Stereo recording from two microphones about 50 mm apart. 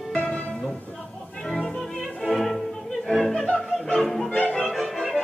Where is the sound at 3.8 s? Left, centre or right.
Centre.